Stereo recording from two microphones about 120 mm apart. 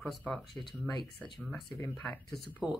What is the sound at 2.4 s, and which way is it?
Speech, 10° right (ahead or behind).